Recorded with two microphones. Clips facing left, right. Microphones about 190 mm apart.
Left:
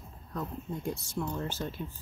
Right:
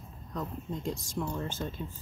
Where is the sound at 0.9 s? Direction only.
90° right.